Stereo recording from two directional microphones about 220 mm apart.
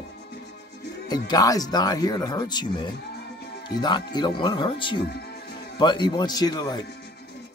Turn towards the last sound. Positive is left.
turn(degrees=20)  # may be behind; listen again after turning